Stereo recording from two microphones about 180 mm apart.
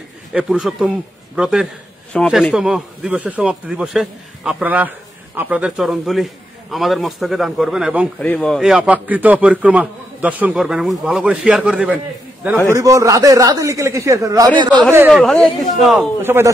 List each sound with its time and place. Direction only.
0.3 s speech: 5° right (ahead or behind)
8.2 s a man's voice: 5° left (ahead or behind)
12.6 s a man's voice: 20° right (ahead or behind)
15.0 s speech: centre (ahead or behind)
16.2 s a man's voice: 15° right (ahead or behind)